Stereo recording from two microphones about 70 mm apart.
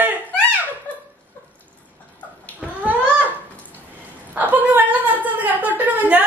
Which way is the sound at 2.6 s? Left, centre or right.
Centre.